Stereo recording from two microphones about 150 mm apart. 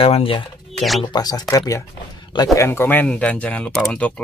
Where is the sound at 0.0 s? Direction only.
40° left (ahead or behind).